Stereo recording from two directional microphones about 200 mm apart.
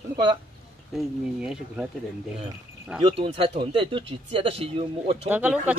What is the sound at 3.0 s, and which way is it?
Speech, 25° right (ahead or behind).